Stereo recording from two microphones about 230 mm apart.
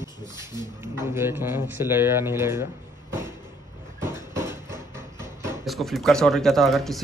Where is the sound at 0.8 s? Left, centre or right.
Centre.